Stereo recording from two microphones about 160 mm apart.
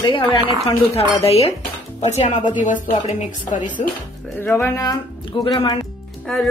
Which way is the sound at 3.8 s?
45° left (ahead or behind).